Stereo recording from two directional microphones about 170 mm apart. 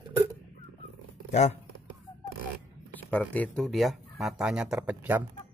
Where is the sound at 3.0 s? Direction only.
10° left (ahead or behind); by 5.2 s 10° right (ahead or behind).